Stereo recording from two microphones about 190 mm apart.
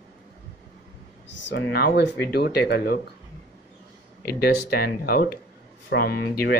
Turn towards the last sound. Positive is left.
turn(degrees=55)  # may be behind; listen again after turning